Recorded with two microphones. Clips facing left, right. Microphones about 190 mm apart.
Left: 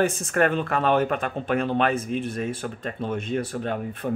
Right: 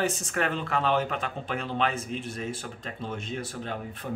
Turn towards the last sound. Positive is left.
turn(degrees=55)  # may be behind; listen again after turning